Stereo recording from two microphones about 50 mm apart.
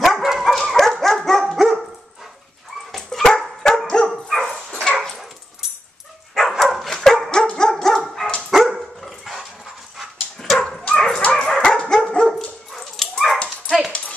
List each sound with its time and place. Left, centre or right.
0.0 s dog: centre
0.5 s dog: centre
2.9 s dog: centre
4.1 s dog: centre
6.6 s dog: centre
10.6 s dog: centre